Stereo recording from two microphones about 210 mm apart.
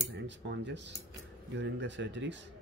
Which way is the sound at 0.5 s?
55° right (ahead or behind).